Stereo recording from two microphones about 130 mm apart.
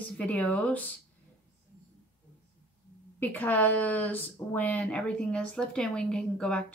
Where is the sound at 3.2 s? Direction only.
10° left (ahead or behind).